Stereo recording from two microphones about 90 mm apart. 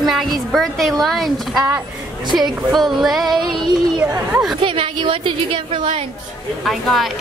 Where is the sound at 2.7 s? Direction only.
Centre (ahead or behind).